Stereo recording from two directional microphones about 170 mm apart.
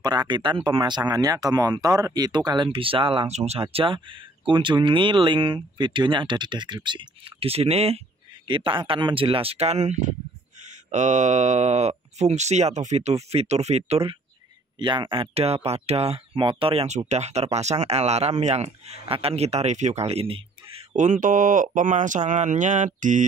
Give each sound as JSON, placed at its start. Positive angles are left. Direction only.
{"t": 0.0, "sound": "speech", "side_deg": -25}
{"t": 20.9, "sound": "speech", "side_deg": -45}